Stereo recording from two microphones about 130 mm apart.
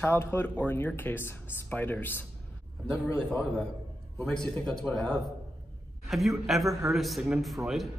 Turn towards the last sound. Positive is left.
turn(degrees=0)  # may be behind; listen again after turning